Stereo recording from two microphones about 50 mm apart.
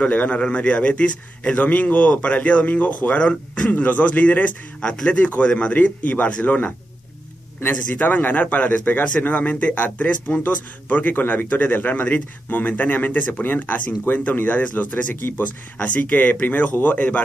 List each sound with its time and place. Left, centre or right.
0.0 s a man's voice: left
7.7 s speech: left